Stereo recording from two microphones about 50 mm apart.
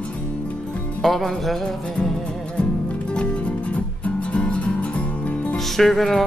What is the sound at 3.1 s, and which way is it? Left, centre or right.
Music, left.